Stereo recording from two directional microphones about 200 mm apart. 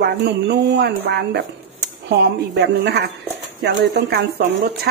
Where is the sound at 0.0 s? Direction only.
55° right (ahead or behind).